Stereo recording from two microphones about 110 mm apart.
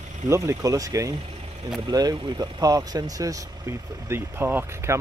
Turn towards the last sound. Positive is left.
turn(degrees=-20)  # may be behind; listen again after turning